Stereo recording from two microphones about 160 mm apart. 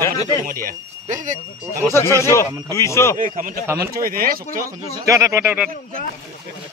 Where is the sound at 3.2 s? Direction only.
60° right (ahead or behind).